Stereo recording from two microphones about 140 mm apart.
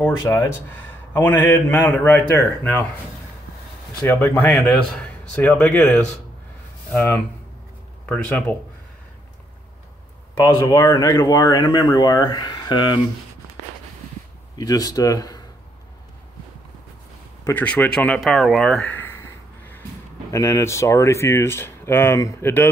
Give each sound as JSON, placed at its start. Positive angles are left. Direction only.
{"t": 0.3, "sound": "a man's voice", "side_deg": 20}
{"t": 4.0, "sound": "a man's voice", "side_deg": 10}
{"t": 10.3, "sound": "speech", "side_deg": 30}
{"t": 14.6, "sound": "speech", "side_deg": 25}
{"t": 17.5, "sound": "speech", "side_deg": 10}